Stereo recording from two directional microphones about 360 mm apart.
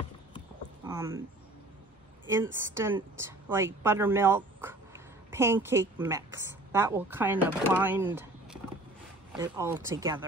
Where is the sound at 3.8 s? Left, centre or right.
Centre.